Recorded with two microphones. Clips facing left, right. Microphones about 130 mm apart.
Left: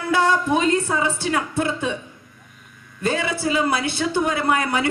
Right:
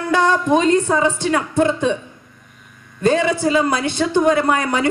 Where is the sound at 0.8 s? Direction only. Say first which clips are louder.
Right 5 dB; 40° right (ahead or behind).